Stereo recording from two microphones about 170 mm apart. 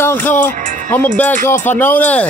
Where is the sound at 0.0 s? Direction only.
10° left (ahead or behind).